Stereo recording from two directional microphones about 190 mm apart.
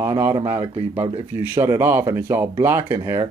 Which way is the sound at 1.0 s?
30° right (ahead or behind).